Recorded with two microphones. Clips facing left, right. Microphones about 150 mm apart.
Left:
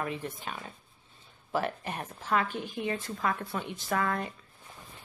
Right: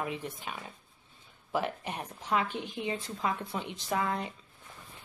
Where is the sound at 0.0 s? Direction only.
10° right (ahead or behind).